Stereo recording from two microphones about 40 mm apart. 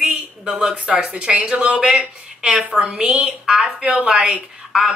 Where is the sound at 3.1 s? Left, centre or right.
Right.